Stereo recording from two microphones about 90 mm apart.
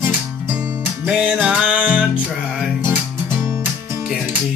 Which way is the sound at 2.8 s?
30° right (ahead or behind).